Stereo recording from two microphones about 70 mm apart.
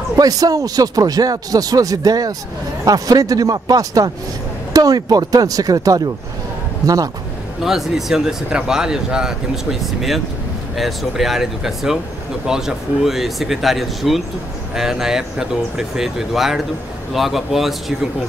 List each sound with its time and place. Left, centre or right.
0.2 s speech: right
7.6 s speech: centre